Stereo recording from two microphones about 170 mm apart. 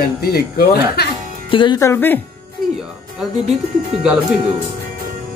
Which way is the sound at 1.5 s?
30° left (ahead or behind).